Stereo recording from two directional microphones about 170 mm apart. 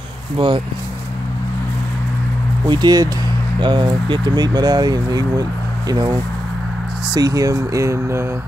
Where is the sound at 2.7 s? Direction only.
25° right (ahead or behind).